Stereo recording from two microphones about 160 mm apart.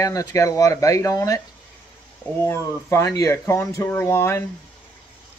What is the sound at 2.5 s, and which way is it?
Speech, 15° left (ahead or behind).